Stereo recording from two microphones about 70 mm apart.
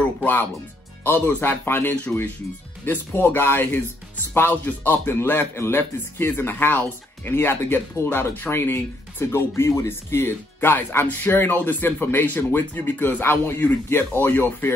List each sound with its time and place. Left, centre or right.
0.2 s speech: left